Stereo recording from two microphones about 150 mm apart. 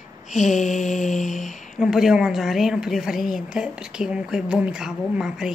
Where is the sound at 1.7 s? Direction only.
Centre (ahead or behind).